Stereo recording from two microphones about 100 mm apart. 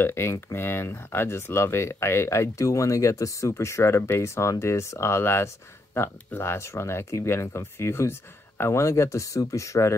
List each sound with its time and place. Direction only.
0.0 s speech: 25° left (ahead or behind)